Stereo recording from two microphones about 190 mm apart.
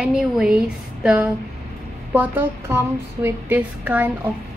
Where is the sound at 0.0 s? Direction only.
5° right (ahead or behind).